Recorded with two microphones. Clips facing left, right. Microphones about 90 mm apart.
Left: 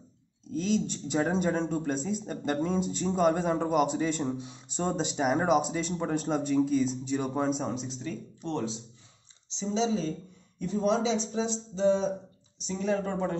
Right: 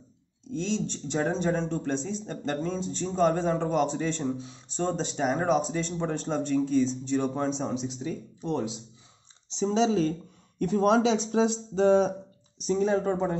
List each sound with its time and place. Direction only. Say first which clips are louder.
0.5 s speech: left 1 dB; 5° left (ahead or behind)
8.0 s speech: right 3 dB; 10° right (ahead or behind)
9.6 s speech: right 5 dB; 55° right (ahead or behind)
10.6 s speech: right 5 dB; 70° right (ahead or behind)
12.6 s speech: right 5 dB; 35° right (ahead or behind)